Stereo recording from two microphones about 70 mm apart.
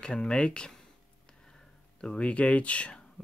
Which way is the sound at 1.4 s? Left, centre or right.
Centre.